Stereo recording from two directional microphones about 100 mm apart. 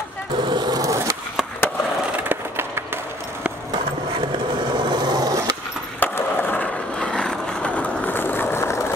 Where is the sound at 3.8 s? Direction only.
60° right (ahead or behind); by 5.4 s 45° right (ahead or behind).